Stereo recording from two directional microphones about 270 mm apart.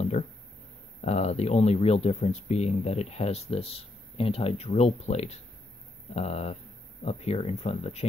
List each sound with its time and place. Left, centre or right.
1.0 s speech: left